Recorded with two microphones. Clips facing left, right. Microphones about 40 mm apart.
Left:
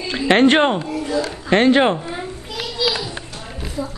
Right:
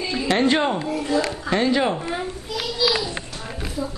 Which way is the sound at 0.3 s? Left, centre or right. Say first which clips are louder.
Left 6 dB; left.